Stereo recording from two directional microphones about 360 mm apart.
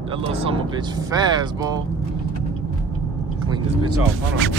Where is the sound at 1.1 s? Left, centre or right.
Centre.